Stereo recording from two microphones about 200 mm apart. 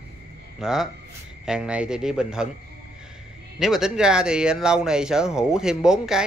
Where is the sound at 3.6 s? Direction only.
Centre (ahead or behind).